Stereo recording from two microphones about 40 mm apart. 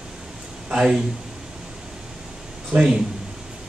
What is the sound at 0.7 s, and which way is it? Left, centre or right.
Speech, centre.